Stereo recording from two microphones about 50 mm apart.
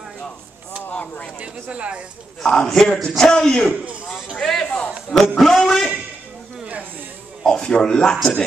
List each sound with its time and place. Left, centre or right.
0.8 s a sound: left
1.4 s speech: right
2.4 s speech: centre
7.4 s speech: centre